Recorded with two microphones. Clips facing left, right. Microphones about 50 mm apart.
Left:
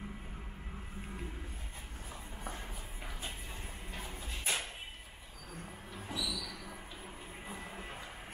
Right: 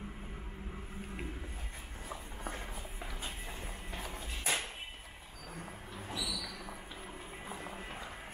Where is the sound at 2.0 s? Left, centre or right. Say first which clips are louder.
Right 3 dB; right.